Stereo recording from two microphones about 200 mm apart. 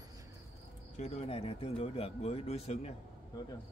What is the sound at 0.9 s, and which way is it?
Speech, 35° left (ahead or behind).